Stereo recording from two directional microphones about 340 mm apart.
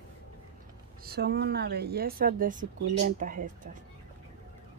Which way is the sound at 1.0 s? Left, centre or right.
Right.